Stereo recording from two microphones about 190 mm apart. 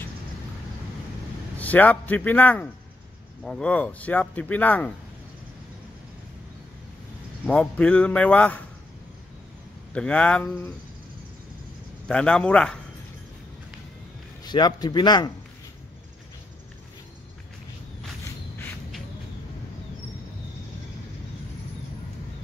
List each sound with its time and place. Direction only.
1.6 s speech: 10° left (ahead or behind)
7.4 s speech: 5° left (ahead or behind)
9.9 s speech: 5° left (ahead or behind)
12.1 s speech: 5° left (ahead or behind)
14.4 s a man's voice: 20° left (ahead or behind)